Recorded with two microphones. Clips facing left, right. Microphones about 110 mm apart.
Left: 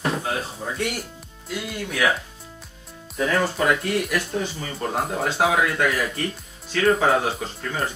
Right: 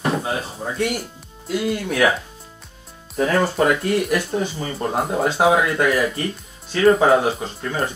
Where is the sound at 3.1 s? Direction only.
35° right (ahead or behind).